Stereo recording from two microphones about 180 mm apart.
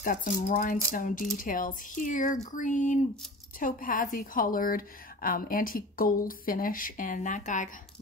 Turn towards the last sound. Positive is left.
turn(degrees=45)  # may be behind; listen again after turning